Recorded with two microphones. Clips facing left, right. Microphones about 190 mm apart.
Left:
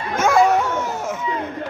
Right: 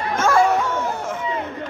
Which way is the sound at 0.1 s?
15° left (ahead or behind).